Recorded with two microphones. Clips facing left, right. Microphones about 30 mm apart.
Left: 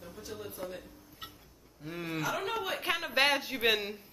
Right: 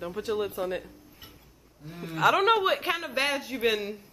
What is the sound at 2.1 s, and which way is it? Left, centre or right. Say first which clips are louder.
Speech: right 13 dB; right.